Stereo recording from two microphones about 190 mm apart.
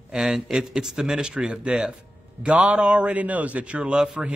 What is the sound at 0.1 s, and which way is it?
Speech, 5° right (ahead or behind).